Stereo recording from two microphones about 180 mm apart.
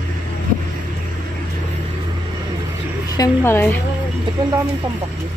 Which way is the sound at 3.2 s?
15° left (ahead or behind).